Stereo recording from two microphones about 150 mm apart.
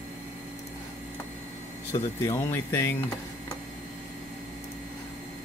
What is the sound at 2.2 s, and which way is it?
Speech, 15° left (ahead or behind).